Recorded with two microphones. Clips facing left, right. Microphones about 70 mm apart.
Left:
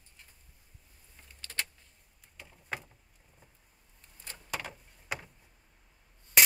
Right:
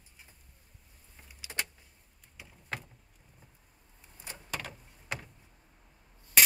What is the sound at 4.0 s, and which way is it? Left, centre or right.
Vehicle, centre.